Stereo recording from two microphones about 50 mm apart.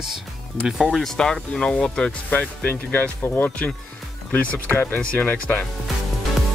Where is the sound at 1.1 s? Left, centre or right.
Centre.